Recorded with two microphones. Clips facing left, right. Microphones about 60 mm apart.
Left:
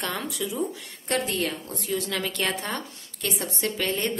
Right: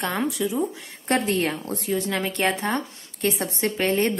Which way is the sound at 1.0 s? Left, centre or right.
Right.